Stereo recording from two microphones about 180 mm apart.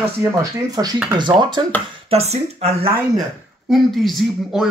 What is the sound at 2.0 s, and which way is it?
Speech, 35° right (ahead or behind).